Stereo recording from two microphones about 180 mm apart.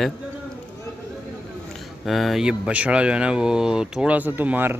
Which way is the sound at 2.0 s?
Centre (ahead or behind).